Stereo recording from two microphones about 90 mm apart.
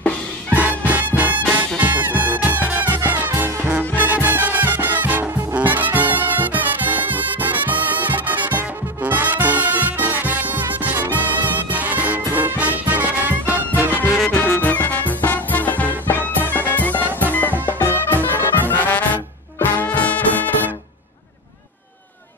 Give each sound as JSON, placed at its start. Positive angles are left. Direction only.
{"t": 0.6, "sound": "music", "side_deg": -15}
{"t": 14.6, "sound": "music", "side_deg": 20}